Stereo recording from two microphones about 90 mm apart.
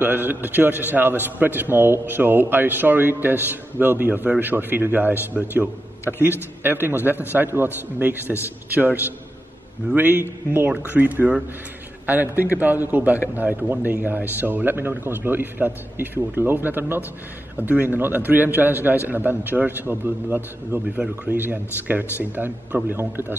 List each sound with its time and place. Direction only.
0.0 s speech: 20° right (ahead or behind)